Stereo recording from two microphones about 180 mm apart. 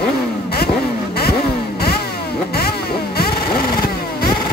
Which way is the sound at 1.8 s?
60° left (ahead or behind).